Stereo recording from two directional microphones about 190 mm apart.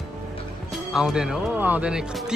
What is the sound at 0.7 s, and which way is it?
Speech, centre (ahead or behind).